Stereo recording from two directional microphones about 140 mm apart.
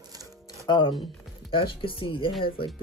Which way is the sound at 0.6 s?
30° left (ahead or behind).